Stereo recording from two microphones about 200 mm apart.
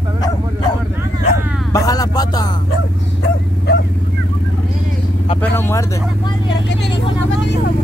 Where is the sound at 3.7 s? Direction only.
55° left (ahead or behind).